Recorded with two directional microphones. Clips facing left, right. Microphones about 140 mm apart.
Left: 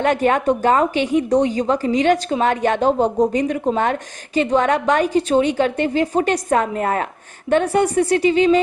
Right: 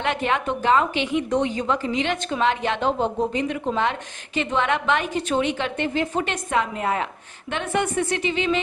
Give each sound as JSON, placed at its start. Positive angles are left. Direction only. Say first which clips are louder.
{"t": 0.0, "sound": "speech", "louder": "left 7 dB", "side_deg": 40}